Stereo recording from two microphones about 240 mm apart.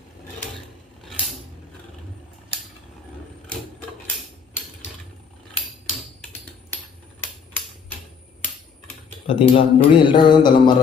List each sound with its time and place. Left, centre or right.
9.3 s speech: left